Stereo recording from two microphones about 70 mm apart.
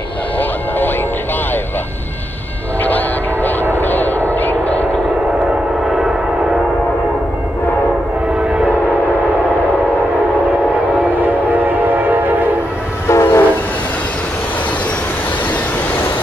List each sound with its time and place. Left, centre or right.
0.4 s music: left
3.7 s vehicle: left
5.5 s vehicle: centre
8.3 s train: centre
11.1 s train: right
13.1 s train: left